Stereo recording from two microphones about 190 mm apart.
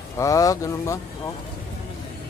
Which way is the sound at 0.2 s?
15° left (ahead or behind).